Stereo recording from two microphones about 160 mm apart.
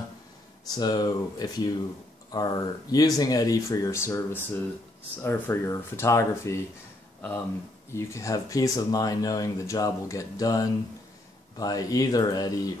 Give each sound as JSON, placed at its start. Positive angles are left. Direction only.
{"t": 0.7, "sound": "speech", "side_deg": 25}